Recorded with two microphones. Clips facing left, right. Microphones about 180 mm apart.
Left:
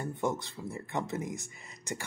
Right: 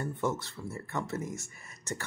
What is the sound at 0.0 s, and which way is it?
Speech, 15° left (ahead or behind).